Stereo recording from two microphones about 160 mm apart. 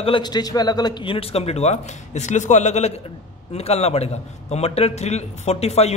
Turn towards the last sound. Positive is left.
turn(degrees=40)  # may be behind; listen again after turning